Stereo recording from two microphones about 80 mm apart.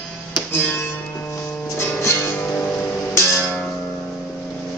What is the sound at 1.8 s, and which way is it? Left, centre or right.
Music, left.